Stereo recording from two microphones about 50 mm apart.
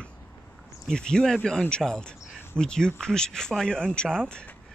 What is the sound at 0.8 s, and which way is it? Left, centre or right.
A man's voice, centre.